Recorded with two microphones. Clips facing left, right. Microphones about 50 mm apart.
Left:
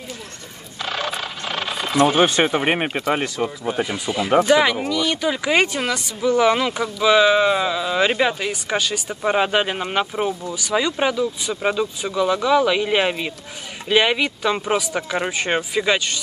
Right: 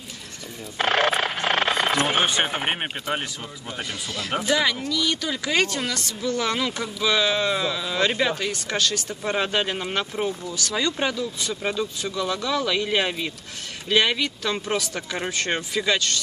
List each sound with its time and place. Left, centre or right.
0.7 s a sound: right
2.1 s speech: left
3.3 s speech: left
3.8 s speech: centre